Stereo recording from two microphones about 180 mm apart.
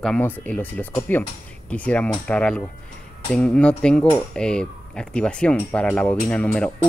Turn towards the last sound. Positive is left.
turn(degrees=5)  # may be behind; listen again after turning